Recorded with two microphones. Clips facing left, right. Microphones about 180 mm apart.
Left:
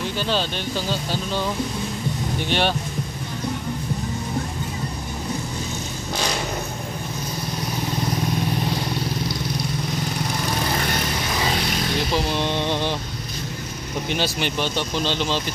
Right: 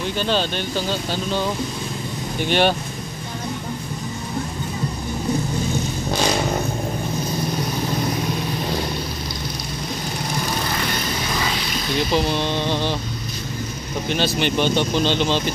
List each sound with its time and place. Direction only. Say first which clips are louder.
2.4 s speech: right 5 dB; centre (ahead or behind)
12.5 s speech: right 1 dB; 15° left (ahead or behind)
14.0 s speech: right 4 dB; 10° left (ahead or behind)